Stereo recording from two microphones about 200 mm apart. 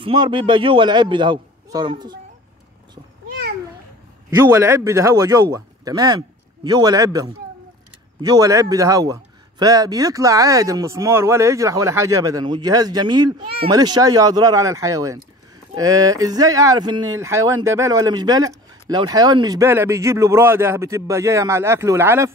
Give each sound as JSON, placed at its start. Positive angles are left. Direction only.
{"t": 0.0, "sound": "speech", "side_deg": -25}
{"t": 4.6, "sound": "a man's voice", "side_deg": -15}